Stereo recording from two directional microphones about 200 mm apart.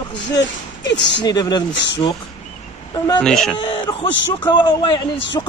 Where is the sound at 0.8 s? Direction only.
60° left (ahead or behind).